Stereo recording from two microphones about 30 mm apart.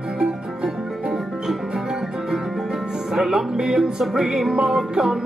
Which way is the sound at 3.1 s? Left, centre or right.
Centre.